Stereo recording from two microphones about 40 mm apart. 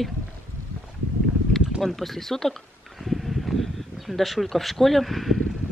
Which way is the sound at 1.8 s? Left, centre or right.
Centre.